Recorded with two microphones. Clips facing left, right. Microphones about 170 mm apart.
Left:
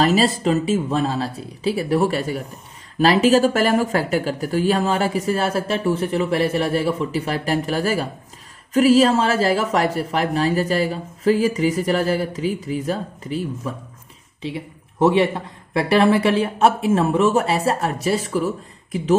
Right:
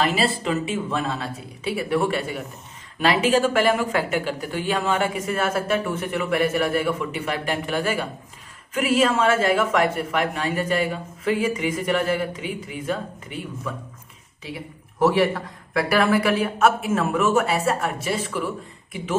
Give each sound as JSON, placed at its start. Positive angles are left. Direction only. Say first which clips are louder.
{"t": 0.0, "sound": "speech", "louder": "left 5 dB", "side_deg": 40}
{"t": 15.0, "sound": "speech", "louder": "left 2 dB", "side_deg": 20}